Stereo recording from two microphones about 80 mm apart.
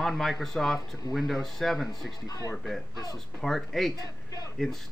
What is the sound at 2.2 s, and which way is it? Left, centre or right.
Speech, left.